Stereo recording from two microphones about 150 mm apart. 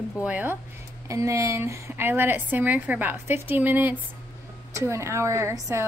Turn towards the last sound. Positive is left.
turn(degrees=-20)  # may be behind; listen again after turning